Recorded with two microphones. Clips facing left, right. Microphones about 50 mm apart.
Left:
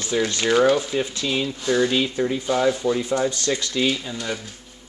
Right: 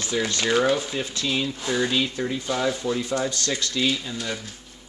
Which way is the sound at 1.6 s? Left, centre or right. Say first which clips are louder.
Left 7 dB; centre.